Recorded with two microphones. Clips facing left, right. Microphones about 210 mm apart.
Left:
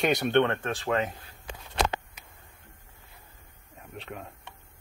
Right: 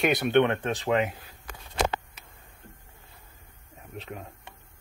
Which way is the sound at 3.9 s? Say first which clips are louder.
Right 1 dB; centre (ahead or behind).